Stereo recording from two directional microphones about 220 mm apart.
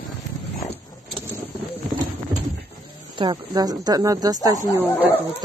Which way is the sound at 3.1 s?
20° right (ahead or behind).